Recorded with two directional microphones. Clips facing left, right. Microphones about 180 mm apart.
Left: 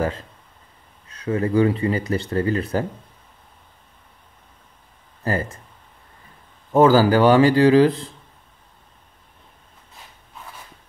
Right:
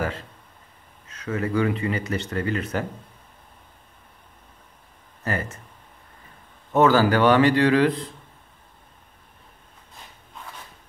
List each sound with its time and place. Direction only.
1.0 s speech: 30° left (ahead or behind)
5.2 s speech: 35° left (ahead or behind)
6.8 s speech: 30° left (ahead or behind)